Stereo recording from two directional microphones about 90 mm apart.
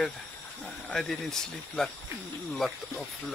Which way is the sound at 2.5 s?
Centre (ahead or behind).